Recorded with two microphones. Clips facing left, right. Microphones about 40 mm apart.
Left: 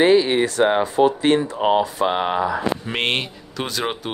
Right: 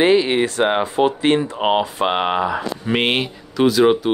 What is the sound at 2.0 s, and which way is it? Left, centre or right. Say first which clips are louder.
Speech: right 2 dB; right.